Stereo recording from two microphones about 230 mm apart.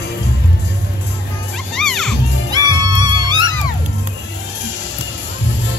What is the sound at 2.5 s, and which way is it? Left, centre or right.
Music, centre.